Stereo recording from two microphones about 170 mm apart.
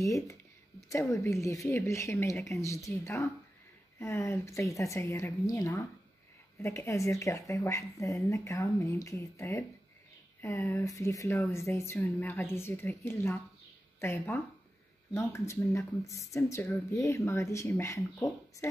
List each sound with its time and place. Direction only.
0.0 s speech: 20° left (ahead or behind)